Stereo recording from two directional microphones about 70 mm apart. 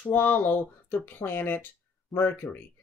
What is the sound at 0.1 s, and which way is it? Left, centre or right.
Speech, left.